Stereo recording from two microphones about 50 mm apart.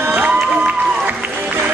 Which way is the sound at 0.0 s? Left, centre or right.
Right.